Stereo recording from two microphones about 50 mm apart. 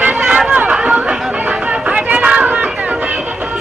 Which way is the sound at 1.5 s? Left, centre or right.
Right.